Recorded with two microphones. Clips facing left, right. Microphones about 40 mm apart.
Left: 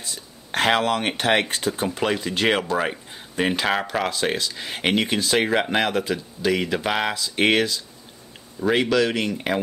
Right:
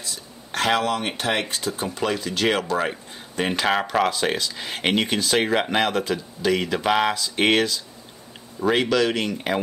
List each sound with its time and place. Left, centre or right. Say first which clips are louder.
0.0 s speech: even; left
2.6 s speech: even; centre